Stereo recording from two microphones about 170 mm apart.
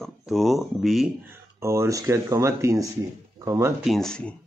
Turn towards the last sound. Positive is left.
turn(degrees=5)  # may be behind; listen again after turning